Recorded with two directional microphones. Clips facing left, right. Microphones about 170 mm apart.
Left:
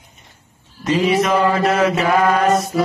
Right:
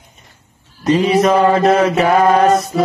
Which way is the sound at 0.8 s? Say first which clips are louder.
Right 4 dB; 35° right (ahead or behind).